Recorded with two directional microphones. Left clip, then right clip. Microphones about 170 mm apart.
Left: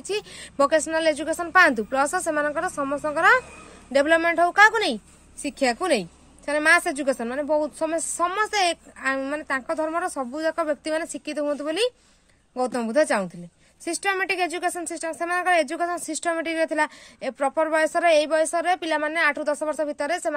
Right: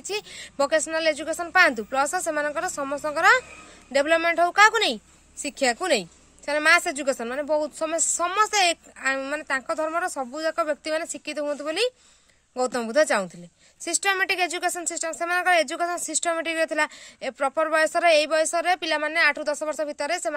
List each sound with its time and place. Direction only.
0.0 s a woman's voice: centre (ahead or behind)